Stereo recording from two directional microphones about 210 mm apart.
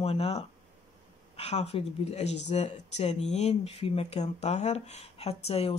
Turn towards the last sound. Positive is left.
turn(degrees=30)  # may be behind; listen again after turning